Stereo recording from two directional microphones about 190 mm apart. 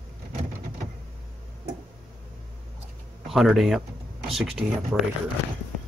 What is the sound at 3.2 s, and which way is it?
Speech, centre (ahead or behind).